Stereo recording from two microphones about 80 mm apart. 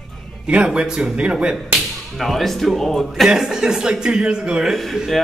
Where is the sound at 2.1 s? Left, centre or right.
Centre.